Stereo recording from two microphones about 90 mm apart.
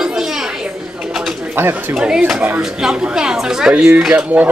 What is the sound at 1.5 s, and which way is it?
Speech, 25° right (ahead or behind).